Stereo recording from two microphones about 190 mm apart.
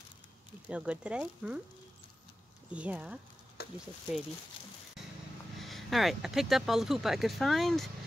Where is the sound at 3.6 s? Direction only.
55° left (ahead or behind).